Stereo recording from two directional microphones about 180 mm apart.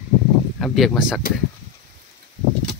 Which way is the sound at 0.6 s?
Centre (ahead or behind).